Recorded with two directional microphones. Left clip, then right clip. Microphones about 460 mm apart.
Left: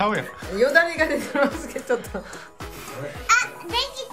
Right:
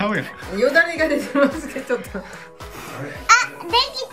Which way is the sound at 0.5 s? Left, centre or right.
Centre.